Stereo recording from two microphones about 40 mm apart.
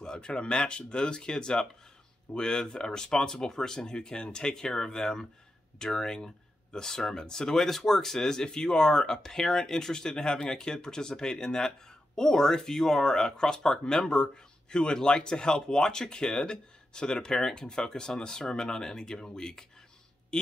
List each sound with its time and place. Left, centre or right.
0.0 s speech: left